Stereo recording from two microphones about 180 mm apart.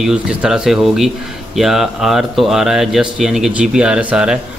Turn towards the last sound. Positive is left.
turn(degrees=-5)  # may be behind; listen again after turning